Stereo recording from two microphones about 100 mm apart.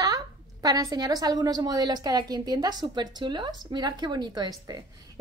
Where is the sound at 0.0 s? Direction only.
40° right (ahead or behind).